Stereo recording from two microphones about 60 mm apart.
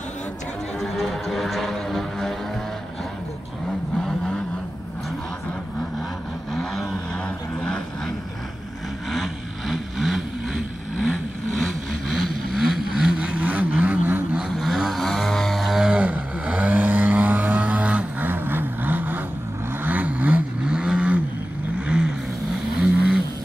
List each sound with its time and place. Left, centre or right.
0.7 s music: centre
6.5 s vehicle: centre
9.1 s vehicle: centre
13.2 s vehicle: right
14.6 s vehicle: centre
15.9 s vehicle: right
18.3 s vehicle: right
20.6 s vehicle: centre
22.7 s vehicle: centre